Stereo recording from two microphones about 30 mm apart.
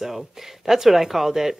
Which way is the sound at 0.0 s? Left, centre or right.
Centre.